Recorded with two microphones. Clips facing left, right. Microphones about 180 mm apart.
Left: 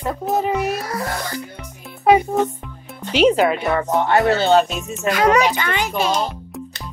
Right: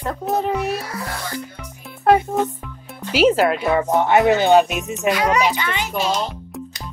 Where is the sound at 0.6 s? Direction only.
40° left (ahead or behind).